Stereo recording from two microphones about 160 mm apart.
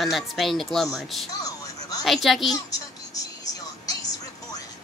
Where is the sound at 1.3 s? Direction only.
20° left (ahead or behind).